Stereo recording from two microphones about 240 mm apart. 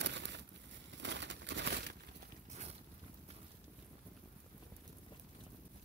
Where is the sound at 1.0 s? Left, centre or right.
Right.